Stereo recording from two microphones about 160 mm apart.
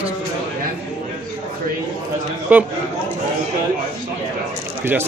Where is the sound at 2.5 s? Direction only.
10° right (ahead or behind).